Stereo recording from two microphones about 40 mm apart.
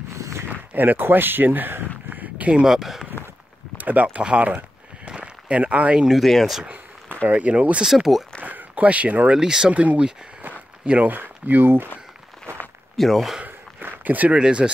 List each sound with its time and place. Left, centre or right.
0.7 s speech: right
2.6 s speech: centre
3.7 s speech: right
5.0 s a sound: right
6.2 s speech: centre
7.2 s speech: right
7.8 s speech: centre
8.4 s a sound: right
9.3 s speech: centre
9.7 s speech: right
11.1 s speech: right
12.9 s speech: centre
13.7 s a sound: right
14.3 s speech: right